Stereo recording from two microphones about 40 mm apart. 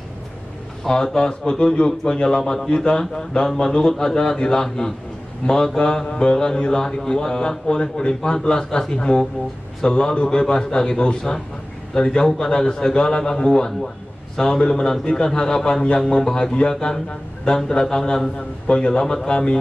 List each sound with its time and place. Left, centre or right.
0.8 s a man's voice: centre
17.7 s speech: centre